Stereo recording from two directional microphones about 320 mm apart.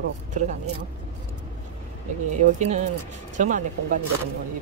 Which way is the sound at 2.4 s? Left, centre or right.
Right.